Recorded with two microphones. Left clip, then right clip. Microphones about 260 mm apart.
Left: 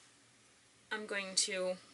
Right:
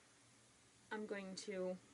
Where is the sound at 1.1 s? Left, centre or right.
Centre.